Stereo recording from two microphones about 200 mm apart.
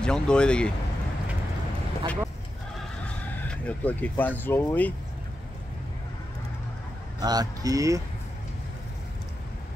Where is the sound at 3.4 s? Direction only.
5° left (ahead or behind).